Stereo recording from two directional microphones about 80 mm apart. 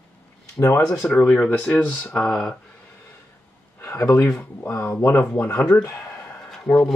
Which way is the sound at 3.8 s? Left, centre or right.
Left.